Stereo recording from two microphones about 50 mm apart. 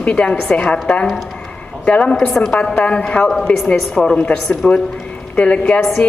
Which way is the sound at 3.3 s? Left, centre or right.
Centre.